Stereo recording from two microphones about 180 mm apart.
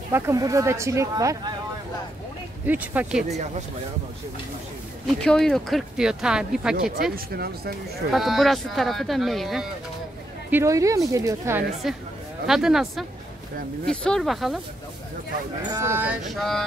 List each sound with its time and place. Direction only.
0.1 s speech: 20° right (ahead or behind)
2.6 s speech: 10° right (ahead or behind)
5.2 s speech: 5° left (ahead or behind)
7.3 s speech: 60° right (ahead or behind)
8.1 s speech: centre (ahead or behind)
10.5 s speech: 15° right (ahead or behind)
11.8 s speech: centre (ahead or behind)
15.7 s speech: 15° right (ahead or behind); by 16.6 s centre (ahead or behind)